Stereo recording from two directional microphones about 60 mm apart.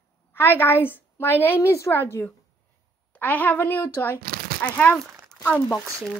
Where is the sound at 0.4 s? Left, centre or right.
Left.